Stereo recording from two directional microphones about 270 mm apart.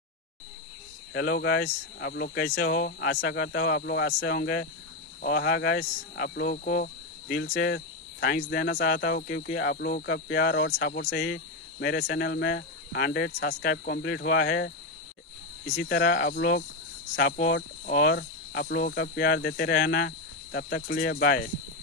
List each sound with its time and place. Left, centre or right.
1.1 s speech: left
15.8 s speech: left